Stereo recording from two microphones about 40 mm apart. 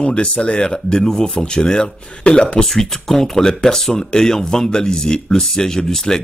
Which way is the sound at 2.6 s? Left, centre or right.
Centre.